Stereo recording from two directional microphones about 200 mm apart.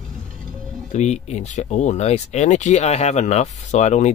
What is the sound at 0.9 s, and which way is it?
Speech, 35° left (ahead or behind).